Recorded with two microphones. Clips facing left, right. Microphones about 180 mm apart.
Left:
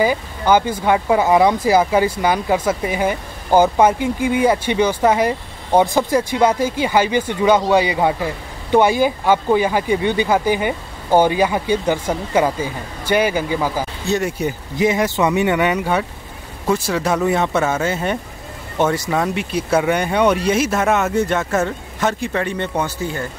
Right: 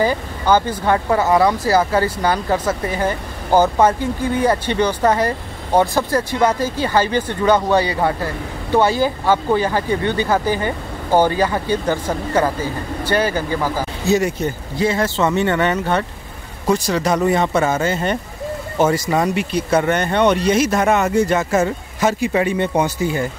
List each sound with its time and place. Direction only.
0.0 s speech: 10° left (ahead or behind); by 23.2 s 15° right (ahead or behind)